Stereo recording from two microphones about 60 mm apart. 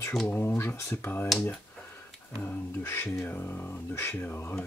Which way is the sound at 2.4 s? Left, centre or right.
Left.